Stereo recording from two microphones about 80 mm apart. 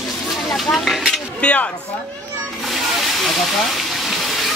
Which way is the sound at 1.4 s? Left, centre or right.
Centre.